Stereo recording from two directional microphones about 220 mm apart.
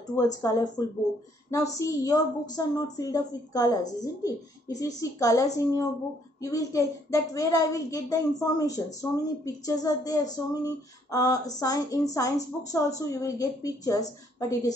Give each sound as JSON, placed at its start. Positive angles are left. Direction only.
{"t": 0.0, "sound": "a woman's voice", "side_deg": 15}